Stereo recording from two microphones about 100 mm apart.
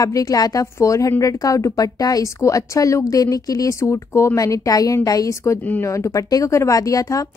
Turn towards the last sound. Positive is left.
turn(degrees=35)  # may be behind; listen again after turning